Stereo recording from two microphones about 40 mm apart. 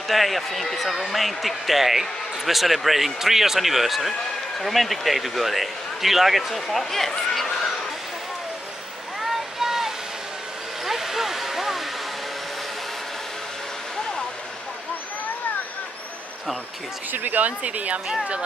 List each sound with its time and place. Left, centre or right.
0.1 s a man's voice: centre
9.6 s vehicle: centre
17.1 s speech: right